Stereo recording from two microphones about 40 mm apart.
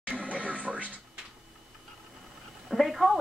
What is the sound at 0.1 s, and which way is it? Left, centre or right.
Television, right.